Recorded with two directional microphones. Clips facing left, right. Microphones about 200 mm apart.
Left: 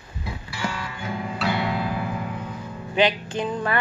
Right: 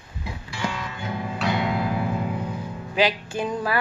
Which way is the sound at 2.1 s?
20° right (ahead or behind).